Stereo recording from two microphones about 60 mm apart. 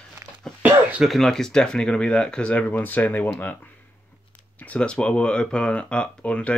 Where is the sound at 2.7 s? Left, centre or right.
Left.